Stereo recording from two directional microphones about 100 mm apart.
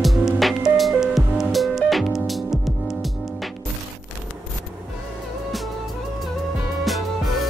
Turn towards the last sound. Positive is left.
turn(degrees=0)  # may be behind; listen again after turning